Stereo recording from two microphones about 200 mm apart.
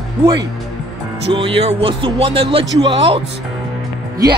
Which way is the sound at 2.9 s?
25° right (ahead or behind).